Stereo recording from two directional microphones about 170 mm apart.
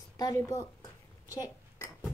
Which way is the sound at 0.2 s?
20° left (ahead or behind).